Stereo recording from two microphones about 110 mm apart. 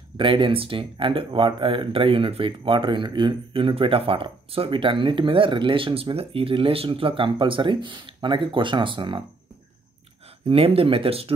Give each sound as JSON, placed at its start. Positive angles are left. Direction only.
{"t": 0.2, "sound": "speech", "side_deg": -50}
{"t": 10.5, "sound": "speech", "side_deg": -60}